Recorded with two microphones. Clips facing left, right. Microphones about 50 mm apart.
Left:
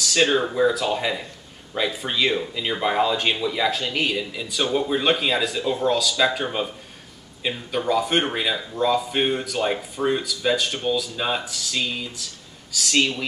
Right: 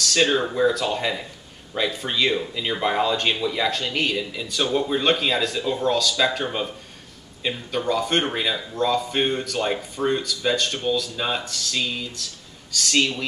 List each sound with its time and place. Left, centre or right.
0.0 s speech: centre